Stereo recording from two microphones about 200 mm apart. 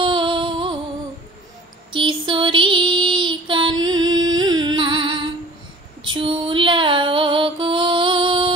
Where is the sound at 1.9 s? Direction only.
25° right (ahead or behind).